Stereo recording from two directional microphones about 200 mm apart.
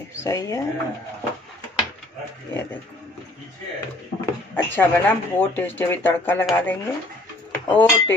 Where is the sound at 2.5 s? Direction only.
15° left (ahead or behind).